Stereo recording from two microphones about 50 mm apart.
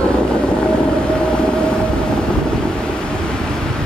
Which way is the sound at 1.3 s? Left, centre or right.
Centre.